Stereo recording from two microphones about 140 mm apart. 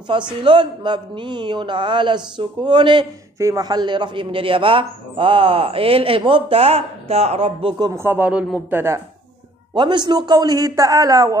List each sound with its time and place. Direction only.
0.1 s a man's voice: 35° right (ahead or behind)
7.9 s speech: 15° right (ahead or behind)
9.8 s a man's voice: 30° right (ahead or behind)